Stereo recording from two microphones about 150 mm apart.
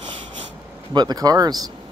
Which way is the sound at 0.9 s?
25° right (ahead or behind).